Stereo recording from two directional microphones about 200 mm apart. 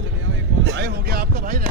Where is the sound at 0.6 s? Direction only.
60° right (ahead or behind); by 1.6 s 45° right (ahead or behind).